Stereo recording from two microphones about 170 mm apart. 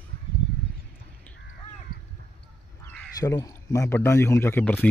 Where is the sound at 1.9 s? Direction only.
60° left (ahead or behind).